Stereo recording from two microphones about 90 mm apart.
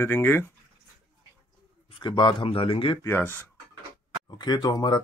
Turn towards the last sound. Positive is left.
turn(degrees=50)  # may be behind; listen again after turning